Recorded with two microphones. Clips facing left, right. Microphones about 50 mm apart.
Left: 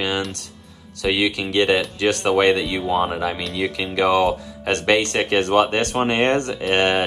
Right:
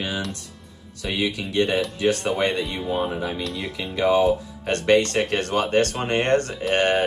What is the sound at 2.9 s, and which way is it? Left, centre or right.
Speech, left.